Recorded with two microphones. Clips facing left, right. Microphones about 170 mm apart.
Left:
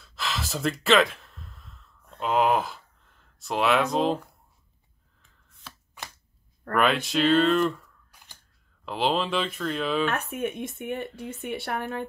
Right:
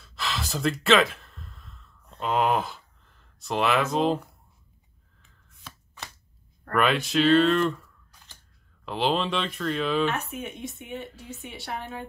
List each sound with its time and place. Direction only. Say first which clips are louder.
0.0 s gasp: even; centre (ahead or behind)
6.7 s speech: even; centre (ahead or behind)
10.0 s speech: left 1 dB; 55° left (ahead or behind)